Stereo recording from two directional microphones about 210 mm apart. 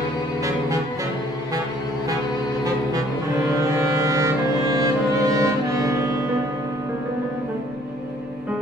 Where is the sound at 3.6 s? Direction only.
15° right (ahead or behind).